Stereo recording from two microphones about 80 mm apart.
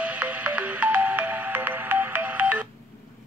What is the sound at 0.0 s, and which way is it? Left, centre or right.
Music, centre.